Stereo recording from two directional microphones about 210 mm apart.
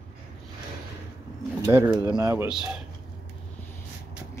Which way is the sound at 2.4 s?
5° right (ahead or behind).